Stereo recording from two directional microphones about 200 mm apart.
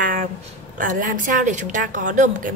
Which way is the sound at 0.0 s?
45° right (ahead or behind).